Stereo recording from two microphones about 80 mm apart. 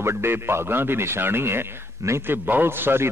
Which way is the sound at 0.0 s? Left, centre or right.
Right.